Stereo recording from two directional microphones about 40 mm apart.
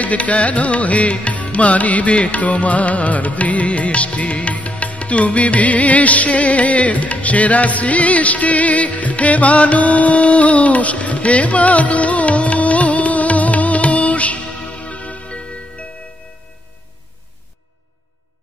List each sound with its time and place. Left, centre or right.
0.0 s music: left